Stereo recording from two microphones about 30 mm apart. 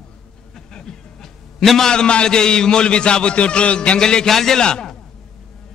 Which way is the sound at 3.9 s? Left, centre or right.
Left.